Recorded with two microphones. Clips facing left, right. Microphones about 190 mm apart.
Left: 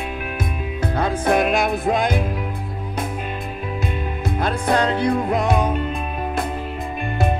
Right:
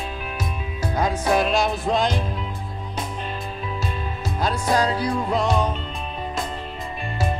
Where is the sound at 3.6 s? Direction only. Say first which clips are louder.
Left 4 dB; 55° left (ahead or behind).